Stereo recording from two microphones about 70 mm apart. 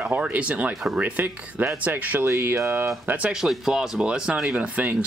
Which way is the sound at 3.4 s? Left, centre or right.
Centre.